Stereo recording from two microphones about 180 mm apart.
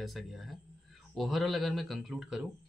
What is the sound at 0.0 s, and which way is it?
Speech, centre (ahead or behind).